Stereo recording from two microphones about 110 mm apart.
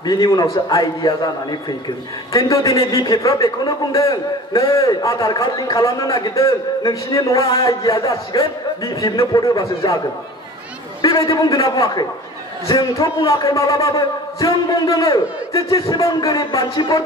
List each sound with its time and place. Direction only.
0.0 s a man's voice: 35° left (ahead or behind)
2.3 s a man's voice: 30° left (ahead or behind)
11.0 s a man's voice: 35° left (ahead or behind)